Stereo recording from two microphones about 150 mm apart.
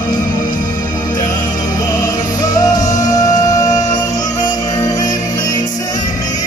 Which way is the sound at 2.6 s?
25° left (ahead or behind).